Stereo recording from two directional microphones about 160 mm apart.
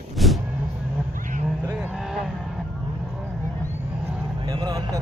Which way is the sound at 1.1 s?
55° right (ahead or behind).